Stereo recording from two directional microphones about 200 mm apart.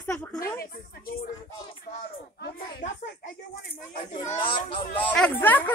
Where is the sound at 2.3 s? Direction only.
50° left (ahead or behind).